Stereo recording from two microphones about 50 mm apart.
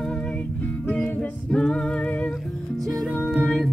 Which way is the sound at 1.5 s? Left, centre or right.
Centre.